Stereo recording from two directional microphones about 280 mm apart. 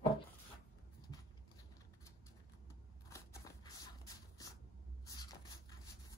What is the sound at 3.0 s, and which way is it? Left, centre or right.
Scissors, centre.